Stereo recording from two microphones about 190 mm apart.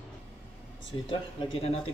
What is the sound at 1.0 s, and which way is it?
Speech, 30° left (ahead or behind).